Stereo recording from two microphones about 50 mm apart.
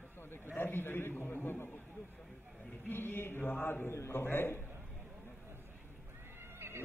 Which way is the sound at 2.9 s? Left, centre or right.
Left.